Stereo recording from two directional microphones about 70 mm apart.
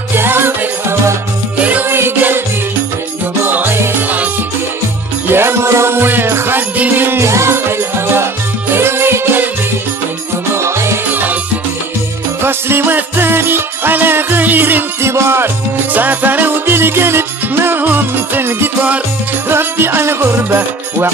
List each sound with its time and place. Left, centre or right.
0.1 s music: right
1.6 s music: right
1.9 s music: right
3.4 s music: right
5.3 s music: right
10.5 s music: right
11.1 s music: right
12.4 s music: right